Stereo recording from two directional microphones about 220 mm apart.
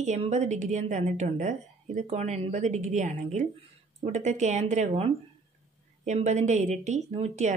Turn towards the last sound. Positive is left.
turn(degrees=-30)  # may be behind; listen again after turning